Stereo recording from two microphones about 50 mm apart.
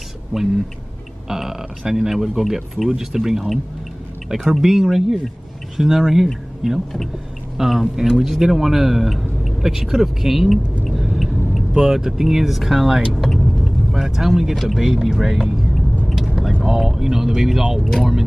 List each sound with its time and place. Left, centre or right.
0.3 s speech: centre
11.0 s a sound: centre
11.7 s speech: centre
16.1 s vehicle: centre
16.6 s speech: centre